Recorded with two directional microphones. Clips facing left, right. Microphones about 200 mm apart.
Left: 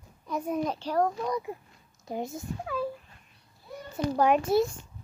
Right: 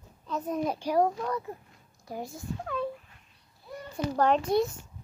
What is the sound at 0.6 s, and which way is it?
Speech, 10° right (ahead or behind).